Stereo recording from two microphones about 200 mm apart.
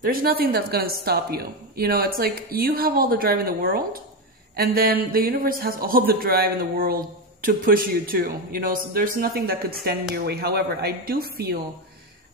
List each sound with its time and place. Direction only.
0.0 s speech: 45° right (ahead or behind)